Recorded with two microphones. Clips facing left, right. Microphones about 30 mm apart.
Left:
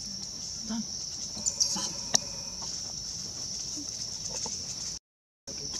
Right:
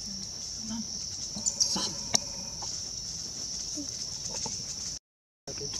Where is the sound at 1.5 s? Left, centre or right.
Centre.